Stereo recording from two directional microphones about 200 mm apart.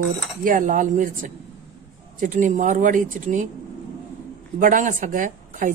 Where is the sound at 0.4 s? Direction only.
40° right (ahead or behind).